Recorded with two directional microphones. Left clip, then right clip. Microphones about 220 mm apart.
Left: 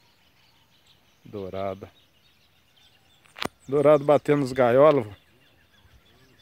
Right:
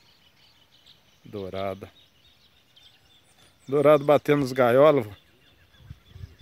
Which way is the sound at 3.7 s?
5° right (ahead or behind).